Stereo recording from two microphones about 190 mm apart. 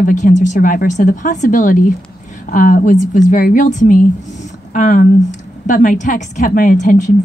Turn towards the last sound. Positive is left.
turn(degrees=40)  # may be behind; listen again after turning